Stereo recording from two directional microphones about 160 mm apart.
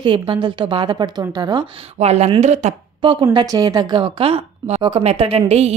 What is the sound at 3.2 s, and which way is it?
A woman's voice, 25° right (ahead or behind).